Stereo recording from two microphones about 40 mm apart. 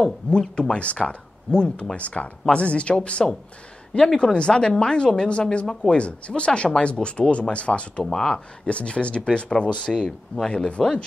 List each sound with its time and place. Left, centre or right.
0.0 s a woman's voice: centre
2.0 s a woman's voice: left
5.7 s speech: centre
5.9 s a woman's voice: left
8.0 s speech: centre
8.6 s a woman's voice: left